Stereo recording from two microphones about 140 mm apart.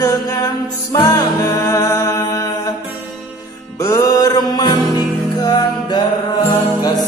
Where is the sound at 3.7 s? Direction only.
25° left (ahead or behind).